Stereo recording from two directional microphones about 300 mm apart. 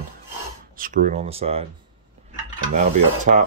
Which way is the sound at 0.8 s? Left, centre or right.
Right.